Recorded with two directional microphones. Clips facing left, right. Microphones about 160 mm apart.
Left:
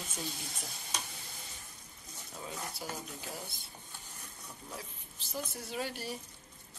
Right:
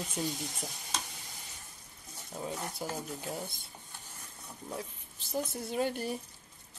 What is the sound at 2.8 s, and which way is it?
Speech, 40° right (ahead or behind).